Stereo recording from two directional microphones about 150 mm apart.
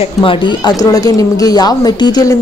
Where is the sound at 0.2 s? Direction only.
35° left (ahead or behind).